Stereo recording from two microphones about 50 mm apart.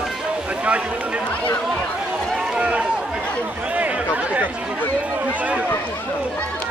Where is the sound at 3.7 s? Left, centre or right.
Right.